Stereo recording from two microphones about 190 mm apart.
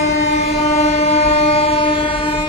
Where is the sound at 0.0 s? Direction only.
35° left (ahead or behind).